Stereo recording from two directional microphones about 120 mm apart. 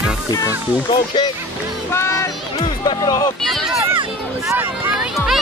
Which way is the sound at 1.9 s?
20° left (ahead or behind).